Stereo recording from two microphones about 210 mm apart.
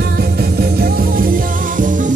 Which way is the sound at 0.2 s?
50° right (ahead or behind).